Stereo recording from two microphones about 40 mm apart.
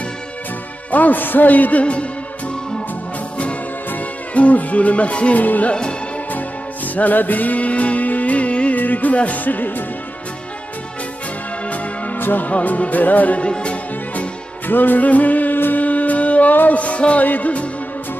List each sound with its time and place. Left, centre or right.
0.9 s music: left
4.3 s music: left
5.4 s music: left
5.7 s music: left
7.0 s music: left
8.7 s music: left
11.6 s music: left
12.2 s music: left
12.4 s music: left
13.4 s music: left
14.7 s music: left
15.5 s music: left
15.8 s music: left